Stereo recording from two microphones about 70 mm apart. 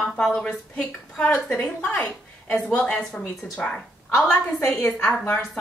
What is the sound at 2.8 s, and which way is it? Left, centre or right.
A woman's voice, centre.